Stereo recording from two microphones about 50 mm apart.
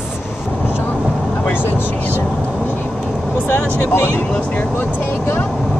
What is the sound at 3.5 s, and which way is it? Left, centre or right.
Speech, left.